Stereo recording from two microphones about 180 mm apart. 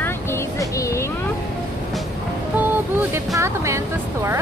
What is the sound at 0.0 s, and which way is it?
Music, 15° left (ahead or behind).